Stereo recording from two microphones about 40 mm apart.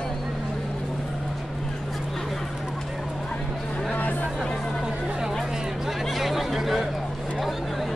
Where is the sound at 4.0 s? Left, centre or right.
Left.